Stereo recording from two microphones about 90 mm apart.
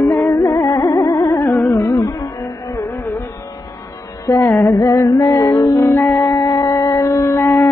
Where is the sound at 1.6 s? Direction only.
30° left (ahead or behind).